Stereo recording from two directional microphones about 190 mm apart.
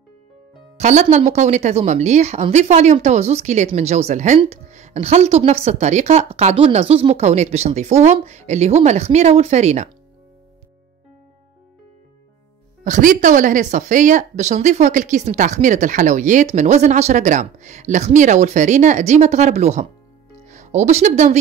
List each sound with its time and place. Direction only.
0.7 s speech: 35° right (ahead or behind)
12.8 s speech: 40° right (ahead or behind)